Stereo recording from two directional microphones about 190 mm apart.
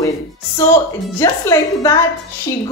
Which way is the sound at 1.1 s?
15° left (ahead or behind).